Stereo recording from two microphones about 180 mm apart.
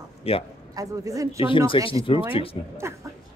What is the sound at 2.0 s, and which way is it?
Speech, 30° left (ahead or behind).